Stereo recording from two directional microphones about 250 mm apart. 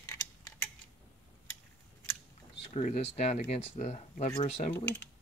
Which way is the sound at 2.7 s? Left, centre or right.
Left.